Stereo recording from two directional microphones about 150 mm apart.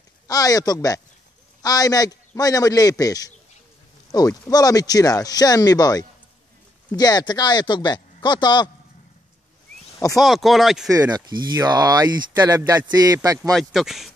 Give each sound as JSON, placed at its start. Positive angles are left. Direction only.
{"t": 0.3, "sound": "speech", "side_deg": 25}
{"t": 10.1, "sound": "speech", "side_deg": 0}
{"t": 10.9, "sound": "speech", "side_deg": -25}
{"t": 13.5, "sound": "speech", "side_deg": 0}